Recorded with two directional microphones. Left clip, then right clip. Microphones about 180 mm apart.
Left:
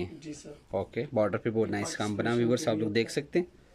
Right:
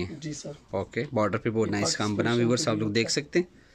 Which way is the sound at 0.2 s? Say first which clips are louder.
Right 5 dB; 30° right (ahead or behind).